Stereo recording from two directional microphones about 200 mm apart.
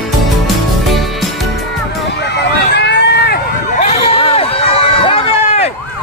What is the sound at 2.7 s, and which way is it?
Run, 55° left (ahead or behind).